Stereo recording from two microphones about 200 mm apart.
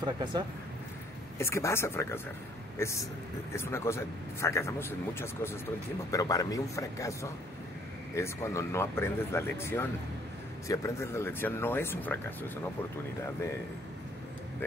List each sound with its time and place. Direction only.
0.0 s speech: 20° right (ahead or behind)
1.4 s speech: 15° left (ahead or behind)